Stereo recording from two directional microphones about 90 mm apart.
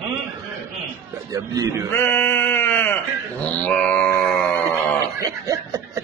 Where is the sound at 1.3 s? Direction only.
40° right (ahead or behind).